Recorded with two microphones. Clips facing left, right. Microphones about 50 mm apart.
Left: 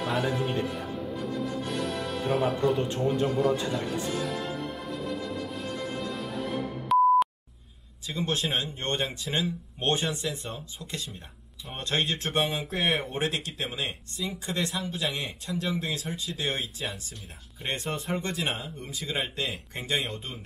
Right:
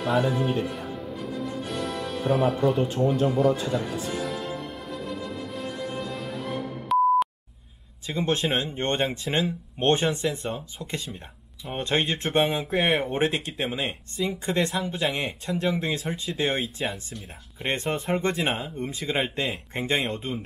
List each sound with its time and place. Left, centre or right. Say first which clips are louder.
0.0 s music: right 4 dB; centre
8.3 s speech: right 4 dB; right
14.1 s speech: right 8 dB; right